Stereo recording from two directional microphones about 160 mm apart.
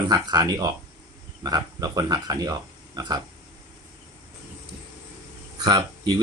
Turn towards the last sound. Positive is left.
turn(degrees=-25)  # may be behind; listen again after turning